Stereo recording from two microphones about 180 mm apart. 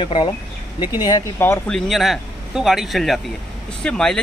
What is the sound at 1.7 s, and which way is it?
Speech, centre (ahead or behind).